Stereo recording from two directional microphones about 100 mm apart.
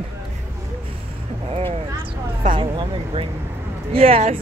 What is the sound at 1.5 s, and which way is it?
Speech, 80° right.